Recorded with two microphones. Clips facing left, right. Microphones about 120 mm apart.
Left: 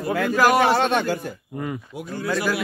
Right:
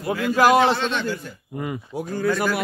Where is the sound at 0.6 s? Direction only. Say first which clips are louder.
Left 1 dB; 50° left (ahead or behind).